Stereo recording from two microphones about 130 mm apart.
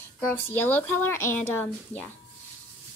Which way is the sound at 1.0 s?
20° left (ahead or behind).